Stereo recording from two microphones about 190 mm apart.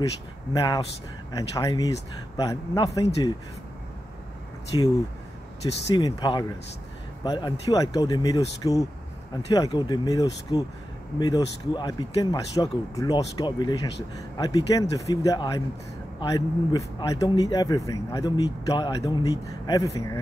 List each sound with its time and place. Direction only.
0.5 s speech: 20° left (ahead or behind)
4.7 s speech: 20° left (ahead or behind)